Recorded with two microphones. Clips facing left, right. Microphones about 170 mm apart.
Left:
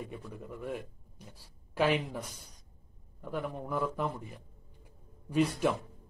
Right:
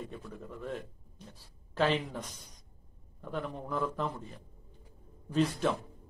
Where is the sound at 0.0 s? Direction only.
10° left (ahead or behind).